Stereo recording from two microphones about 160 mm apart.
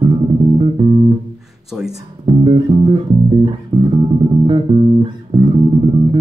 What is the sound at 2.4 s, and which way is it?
Bass guitar, 30° right (ahead or behind).